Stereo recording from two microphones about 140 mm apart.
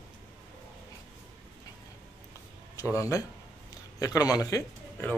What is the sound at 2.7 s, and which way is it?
Speech, 25° left (ahead or behind).